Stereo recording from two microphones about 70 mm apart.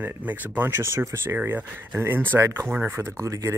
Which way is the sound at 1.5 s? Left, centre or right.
Right.